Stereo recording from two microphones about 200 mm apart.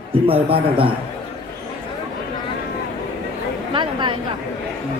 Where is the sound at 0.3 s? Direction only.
25° right (ahead or behind).